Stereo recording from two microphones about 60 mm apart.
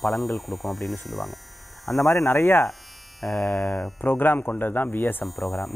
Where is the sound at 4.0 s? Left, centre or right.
Left.